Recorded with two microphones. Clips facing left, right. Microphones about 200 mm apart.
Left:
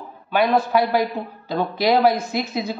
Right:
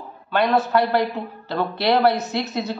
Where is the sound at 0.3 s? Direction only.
10° left (ahead or behind).